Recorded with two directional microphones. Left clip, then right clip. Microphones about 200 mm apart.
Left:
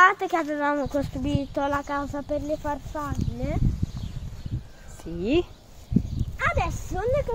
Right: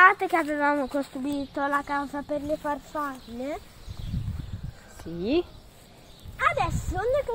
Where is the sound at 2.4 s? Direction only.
5° left (ahead or behind).